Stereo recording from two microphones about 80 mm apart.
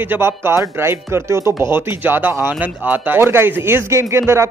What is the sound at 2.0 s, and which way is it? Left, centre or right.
Speech, right.